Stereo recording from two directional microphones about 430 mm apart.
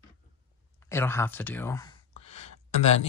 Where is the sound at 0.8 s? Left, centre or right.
Centre.